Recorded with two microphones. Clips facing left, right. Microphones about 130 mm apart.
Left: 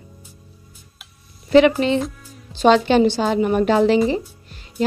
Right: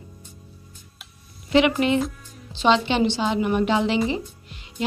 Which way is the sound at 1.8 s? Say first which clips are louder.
Left 2 dB; 30° left (ahead or behind).